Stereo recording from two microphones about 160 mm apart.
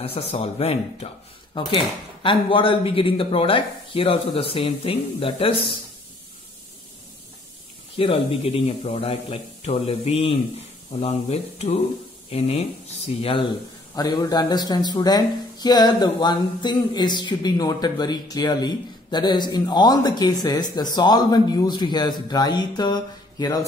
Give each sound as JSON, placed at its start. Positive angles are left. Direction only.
{"t": 0.0, "sound": "speech", "side_deg": 40}
{"t": 8.0, "sound": "speech", "side_deg": 35}
{"t": 13.9, "sound": "speech", "side_deg": 25}